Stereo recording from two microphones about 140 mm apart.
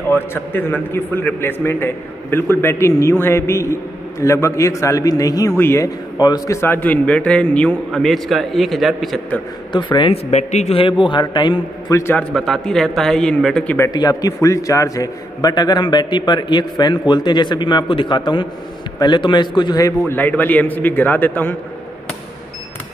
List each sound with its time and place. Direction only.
0.1 s a man's voice: 15° left (ahead or behind)
6.1 s a man's voice: 30° left (ahead or behind); by 9.2 s centre (ahead or behind)
9.7 s a man's voice: 35° left (ahead or behind)
11.9 s speech: 15° left (ahead or behind)
13.7 s a man's voice: 25° left (ahead or behind)
20.1 s a man's voice: 10° left (ahead or behind)